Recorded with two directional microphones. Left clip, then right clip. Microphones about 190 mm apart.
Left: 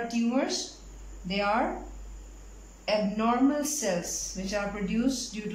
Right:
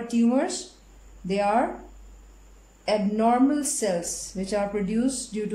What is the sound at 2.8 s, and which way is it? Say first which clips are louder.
Speech: right 4 dB; 30° right (ahead or behind).